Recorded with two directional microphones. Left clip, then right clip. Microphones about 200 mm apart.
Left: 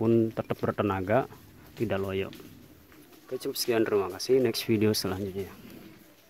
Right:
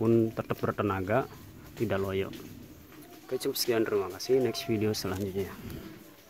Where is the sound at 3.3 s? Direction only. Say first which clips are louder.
Left 1 dB; 10° left (ahead or behind).